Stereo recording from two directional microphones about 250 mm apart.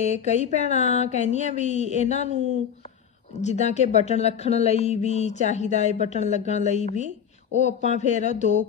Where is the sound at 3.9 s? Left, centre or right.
Left.